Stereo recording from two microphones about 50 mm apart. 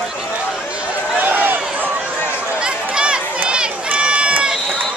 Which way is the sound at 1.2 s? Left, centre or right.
Right.